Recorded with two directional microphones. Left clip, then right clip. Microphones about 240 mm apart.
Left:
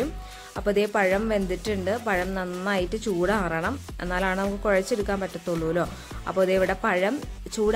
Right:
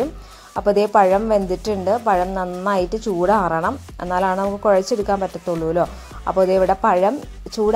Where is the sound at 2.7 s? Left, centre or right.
Centre.